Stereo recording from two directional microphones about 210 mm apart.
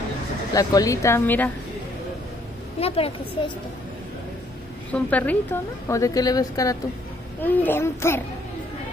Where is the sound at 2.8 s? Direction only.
25° left (ahead or behind).